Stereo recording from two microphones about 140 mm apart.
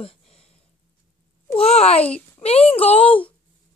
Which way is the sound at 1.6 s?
45° left (ahead or behind).